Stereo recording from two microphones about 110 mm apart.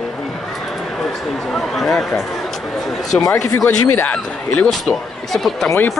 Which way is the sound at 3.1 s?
30° left (ahead or behind).